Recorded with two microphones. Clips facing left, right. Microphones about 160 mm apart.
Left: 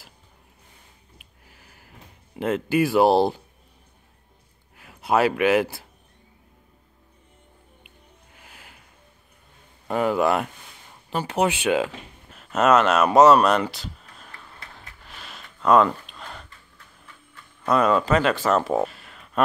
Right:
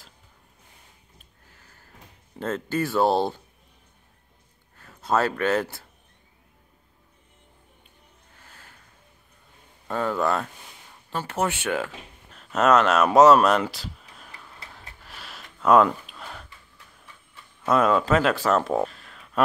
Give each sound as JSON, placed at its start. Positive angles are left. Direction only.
{"t": 1.5, "sound": "a sound", "side_deg": 10}
{"t": 2.3, "sound": "speech", "side_deg": 10}
{"t": 4.7, "sound": "speech", "side_deg": 10}
{"t": 8.4, "sound": "a sound", "side_deg": 15}
{"t": 9.8, "sound": "speech", "side_deg": 15}
{"t": 12.4, "sound": "speech", "side_deg": 0}
{"t": 15.0, "sound": "gasp", "side_deg": -5}
{"t": 17.6, "sound": "speech", "side_deg": 0}